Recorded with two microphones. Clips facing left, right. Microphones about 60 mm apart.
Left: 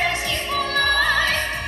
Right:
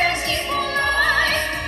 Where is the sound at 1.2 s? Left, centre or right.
Centre.